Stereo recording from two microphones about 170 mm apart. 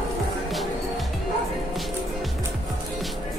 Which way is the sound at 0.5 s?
Centre (ahead or behind).